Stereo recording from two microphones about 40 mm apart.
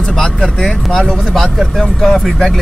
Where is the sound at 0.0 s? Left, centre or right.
Centre.